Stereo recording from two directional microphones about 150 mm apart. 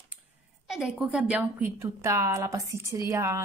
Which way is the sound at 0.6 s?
5° right (ahead or behind).